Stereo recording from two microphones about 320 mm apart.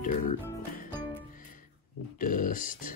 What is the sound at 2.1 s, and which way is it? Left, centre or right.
Grunt, left.